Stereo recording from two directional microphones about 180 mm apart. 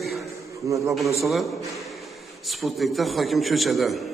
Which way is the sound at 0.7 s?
15° right (ahead or behind).